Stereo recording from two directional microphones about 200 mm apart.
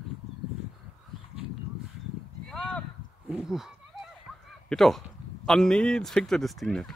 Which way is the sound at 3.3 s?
Centre (ahead or behind).